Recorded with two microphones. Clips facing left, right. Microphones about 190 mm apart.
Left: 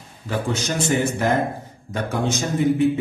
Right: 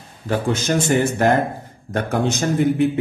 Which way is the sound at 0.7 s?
55° right (ahead or behind).